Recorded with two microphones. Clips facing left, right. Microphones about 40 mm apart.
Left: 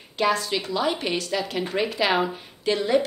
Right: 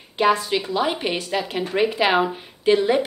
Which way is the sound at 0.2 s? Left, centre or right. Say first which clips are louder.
Right 4 dB; right.